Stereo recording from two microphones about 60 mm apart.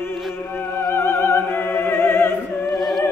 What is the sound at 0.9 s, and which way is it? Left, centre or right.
Opera, left.